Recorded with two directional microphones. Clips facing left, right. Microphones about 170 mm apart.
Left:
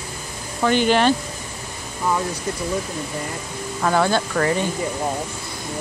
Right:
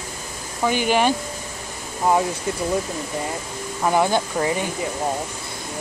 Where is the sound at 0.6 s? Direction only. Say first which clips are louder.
Left 2 dB; 10° right (ahead or behind).